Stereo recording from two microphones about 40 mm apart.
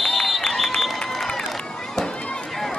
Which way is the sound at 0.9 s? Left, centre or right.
Centre.